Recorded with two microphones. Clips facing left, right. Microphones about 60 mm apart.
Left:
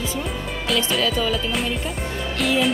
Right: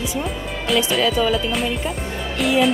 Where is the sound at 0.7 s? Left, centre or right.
Centre.